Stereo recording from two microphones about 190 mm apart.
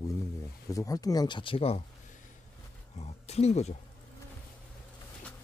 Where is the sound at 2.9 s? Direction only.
35° left (ahead or behind).